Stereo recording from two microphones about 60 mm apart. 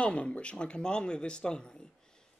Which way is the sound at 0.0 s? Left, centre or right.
Centre.